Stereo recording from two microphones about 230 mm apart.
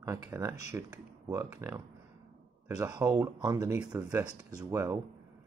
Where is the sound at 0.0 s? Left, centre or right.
Centre.